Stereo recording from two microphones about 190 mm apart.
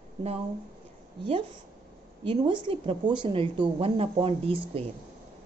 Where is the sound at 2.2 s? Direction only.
25° right (ahead or behind).